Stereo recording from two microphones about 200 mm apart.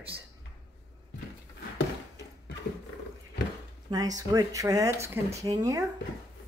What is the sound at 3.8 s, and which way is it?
Speech, 20° right (ahead or behind).